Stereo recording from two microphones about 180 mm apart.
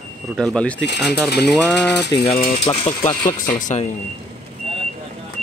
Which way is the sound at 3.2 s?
45° left (ahead or behind).